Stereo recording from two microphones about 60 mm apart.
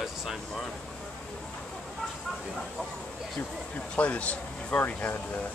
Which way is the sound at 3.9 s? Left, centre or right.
Left.